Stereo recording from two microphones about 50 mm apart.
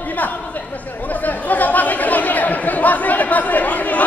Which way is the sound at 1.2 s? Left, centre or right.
Left.